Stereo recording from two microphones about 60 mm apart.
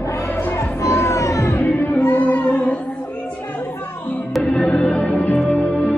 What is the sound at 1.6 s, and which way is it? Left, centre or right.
Music, left.